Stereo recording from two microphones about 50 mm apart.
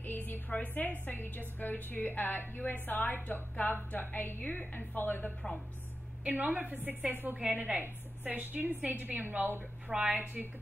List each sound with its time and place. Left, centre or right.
0.0 s a woman's voice: left
6.2 s a woman's voice: right
9.8 s a woman's voice: centre
10.1 s a woman's voice: right